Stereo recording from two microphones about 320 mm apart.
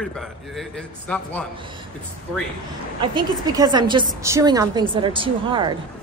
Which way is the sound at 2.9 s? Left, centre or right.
Centre.